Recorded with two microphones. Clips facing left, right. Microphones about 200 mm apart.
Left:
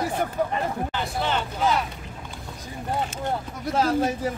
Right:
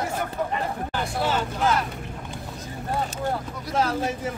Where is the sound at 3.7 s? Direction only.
35° left (ahead or behind).